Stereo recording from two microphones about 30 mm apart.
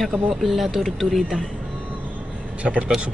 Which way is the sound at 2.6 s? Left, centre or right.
Right.